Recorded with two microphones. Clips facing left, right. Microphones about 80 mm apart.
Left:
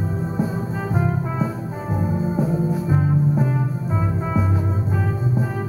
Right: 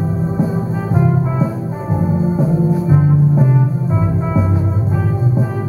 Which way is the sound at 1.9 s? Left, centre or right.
Right.